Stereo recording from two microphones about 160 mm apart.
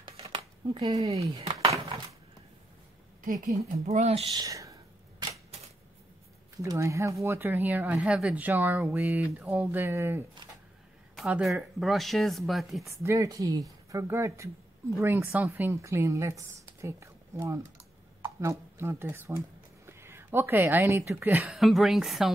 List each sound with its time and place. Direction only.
0.0 s a sound: 35° right (ahead or behind)
0.9 s speech: 40° right (ahead or behind)
3.7 s speech: 45° right (ahead or behind)
4.3 s a woman's voice: 20° right (ahead or behind)
6.6 s speech: 20° right (ahead or behind)
11.1 s speech: 5° right (ahead or behind)
13.0 s speech: 20° right (ahead or behind)
21.5 s speech: centre (ahead or behind)